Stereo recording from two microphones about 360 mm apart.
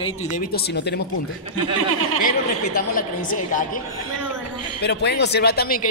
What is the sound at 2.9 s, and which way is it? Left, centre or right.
Speech, left.